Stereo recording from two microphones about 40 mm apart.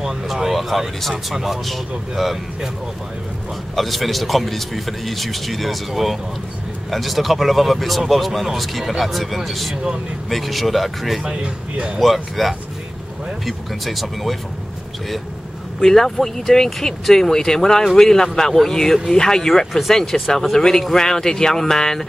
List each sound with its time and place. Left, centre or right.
0.0 s speech: centre
3.7 s speech: centre
11.2 s speech: right
12.0 s speech: centre
15.8 s speech: centre